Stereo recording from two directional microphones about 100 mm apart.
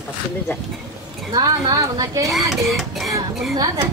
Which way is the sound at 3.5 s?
40° right (ahead or behind).